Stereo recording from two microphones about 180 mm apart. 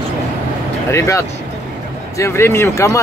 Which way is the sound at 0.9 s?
15° left (ahead or behind).